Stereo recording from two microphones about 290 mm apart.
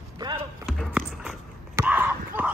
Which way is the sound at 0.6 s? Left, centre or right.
Centre.